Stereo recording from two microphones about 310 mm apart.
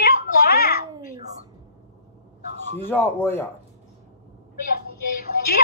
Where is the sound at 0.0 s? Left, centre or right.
Left.